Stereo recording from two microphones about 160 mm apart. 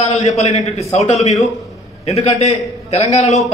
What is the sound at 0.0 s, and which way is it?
A man's voice, 45° left (ahead or behind).